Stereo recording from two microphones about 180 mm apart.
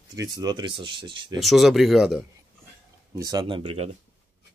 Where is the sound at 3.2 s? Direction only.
20° right (ahead or behind).